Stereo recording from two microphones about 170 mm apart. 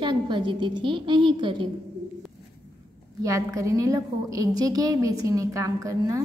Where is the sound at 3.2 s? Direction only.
20° right (ahead or behind).